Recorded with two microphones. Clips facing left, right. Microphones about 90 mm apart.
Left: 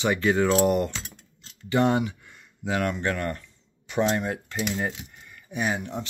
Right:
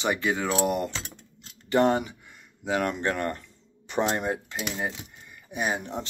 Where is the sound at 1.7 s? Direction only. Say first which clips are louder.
Even; 35° right (ahead or behind).